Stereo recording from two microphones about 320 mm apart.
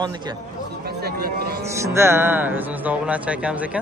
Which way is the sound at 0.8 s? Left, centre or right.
Right.